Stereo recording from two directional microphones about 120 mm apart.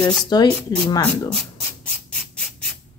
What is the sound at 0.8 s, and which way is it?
Speech, 30° left (ahead or behind).